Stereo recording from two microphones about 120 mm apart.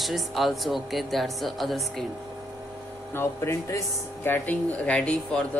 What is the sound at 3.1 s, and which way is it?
Speech, 25° left (ahead or behind).